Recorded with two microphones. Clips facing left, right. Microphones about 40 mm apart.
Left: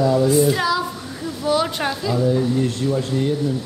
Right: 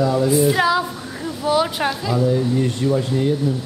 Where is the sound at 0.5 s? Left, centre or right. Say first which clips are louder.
Right 3 dB; centre.